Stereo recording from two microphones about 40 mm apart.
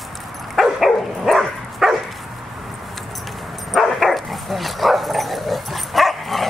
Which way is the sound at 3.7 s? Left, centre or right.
Centre.